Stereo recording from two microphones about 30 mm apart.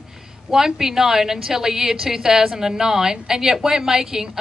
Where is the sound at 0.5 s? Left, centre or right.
Centre.